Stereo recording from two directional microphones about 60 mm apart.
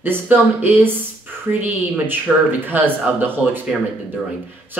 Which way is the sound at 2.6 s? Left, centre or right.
Right.